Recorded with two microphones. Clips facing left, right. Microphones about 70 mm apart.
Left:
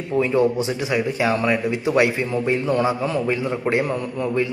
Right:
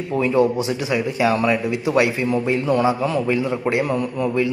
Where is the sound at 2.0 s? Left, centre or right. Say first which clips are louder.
Even; left.